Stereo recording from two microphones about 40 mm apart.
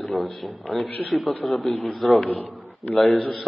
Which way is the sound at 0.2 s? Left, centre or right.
Centre.